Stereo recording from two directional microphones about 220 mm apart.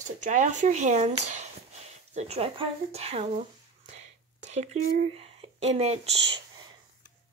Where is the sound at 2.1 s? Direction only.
30° right (ahead or behind).